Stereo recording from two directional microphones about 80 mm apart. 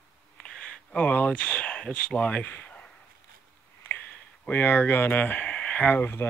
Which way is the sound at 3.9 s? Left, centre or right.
Left.